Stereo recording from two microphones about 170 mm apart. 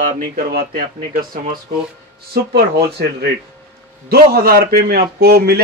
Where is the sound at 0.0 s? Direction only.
65° right (ahead or behind).